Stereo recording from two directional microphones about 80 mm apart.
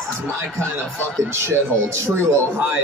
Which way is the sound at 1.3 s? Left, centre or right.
Right.